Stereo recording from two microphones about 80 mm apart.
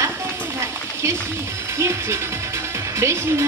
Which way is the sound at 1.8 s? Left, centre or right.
Right.